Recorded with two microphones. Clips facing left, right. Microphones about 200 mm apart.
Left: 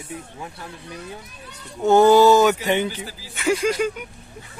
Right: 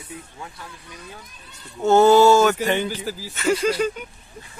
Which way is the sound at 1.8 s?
15° left (ahead or behind).